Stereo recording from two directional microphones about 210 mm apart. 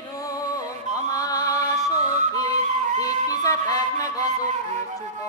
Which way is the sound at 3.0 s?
15° left (ahead or behind).